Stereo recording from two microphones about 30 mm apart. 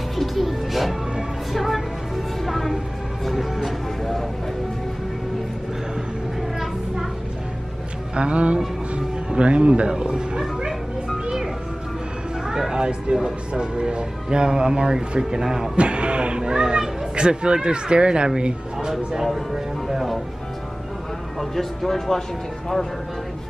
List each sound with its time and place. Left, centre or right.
0.1 s music: centre
4.0 s vehicle: centre
8.2 s speech: right
8.9 s music: right
9.8 s speech: right
12.4 s speech: right
15.7 s speech: right
19.5 s music: centre
21.4 s speech: centre